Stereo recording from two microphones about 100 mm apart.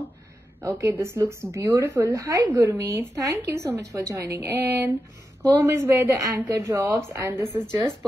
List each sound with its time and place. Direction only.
0.7 s a woman's voice: 35° right (ahead or behind)
4.3 s a woman's voice: 25° right (ahead or behind)